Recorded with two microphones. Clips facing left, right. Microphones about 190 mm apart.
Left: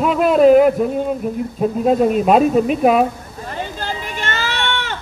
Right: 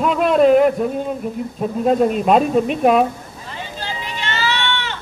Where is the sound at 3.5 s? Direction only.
50° left (ahead or behind).